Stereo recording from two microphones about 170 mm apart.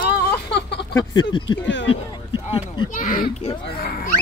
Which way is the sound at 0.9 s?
25° left (ahead or behind).